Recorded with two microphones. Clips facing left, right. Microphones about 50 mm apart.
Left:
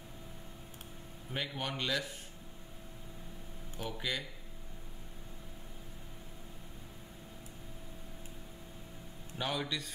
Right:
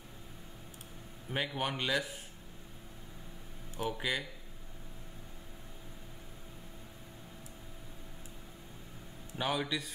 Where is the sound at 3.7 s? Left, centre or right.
Centre.